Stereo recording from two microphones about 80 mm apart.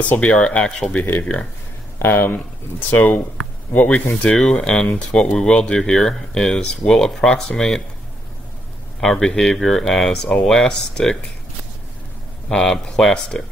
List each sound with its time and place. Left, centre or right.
0.1 s speech: centre
2.0 s speech: left; by 7.8 s centre
9.0 s speech: centre
12.4 s speech: centre